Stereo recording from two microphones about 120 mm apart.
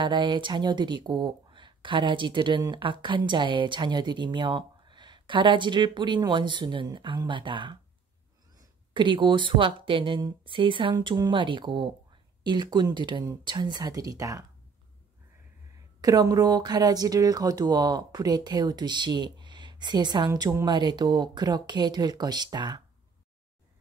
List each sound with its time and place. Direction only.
0.0 s speech: 40° right (ahead or behind)
16.0 s speech: 30° right (ahead or behind)